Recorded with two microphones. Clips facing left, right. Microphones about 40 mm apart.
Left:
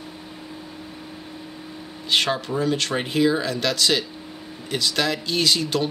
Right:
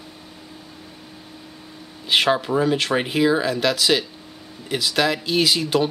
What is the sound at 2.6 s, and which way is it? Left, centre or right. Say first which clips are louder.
Speech: right 3 dB; centre.